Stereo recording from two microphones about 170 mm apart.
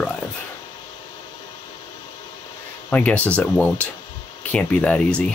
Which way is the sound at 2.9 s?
10° left (ahead or behind).